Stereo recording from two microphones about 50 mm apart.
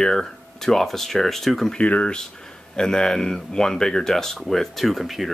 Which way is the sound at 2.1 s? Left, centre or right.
Centre.